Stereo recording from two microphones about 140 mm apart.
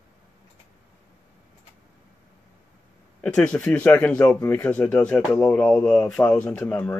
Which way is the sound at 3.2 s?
10° left (ahead or behind).